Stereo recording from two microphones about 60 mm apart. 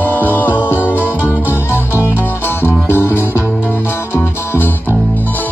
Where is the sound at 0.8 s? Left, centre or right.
Right.